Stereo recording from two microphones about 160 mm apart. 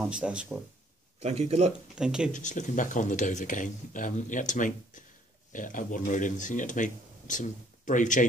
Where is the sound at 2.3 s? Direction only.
50° left (ahead or behind).